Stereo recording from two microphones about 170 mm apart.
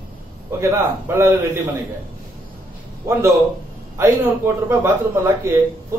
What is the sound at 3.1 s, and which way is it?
A man's voice, 15° right (ahead or behind).